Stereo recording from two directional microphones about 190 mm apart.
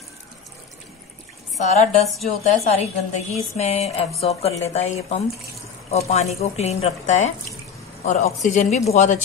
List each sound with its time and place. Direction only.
1.6 s speech: 40° left (ahead or behind)
2.0 s a woman's voice: centre (ahead or behind)
3.1 s speech: 35° left (ahead or behind)